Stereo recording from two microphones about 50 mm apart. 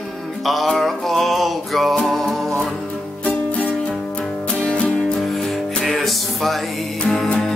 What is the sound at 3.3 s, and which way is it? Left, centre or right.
Music, left.